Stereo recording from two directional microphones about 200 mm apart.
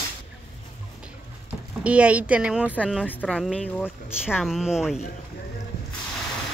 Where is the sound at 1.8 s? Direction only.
5° right (ahead or behind).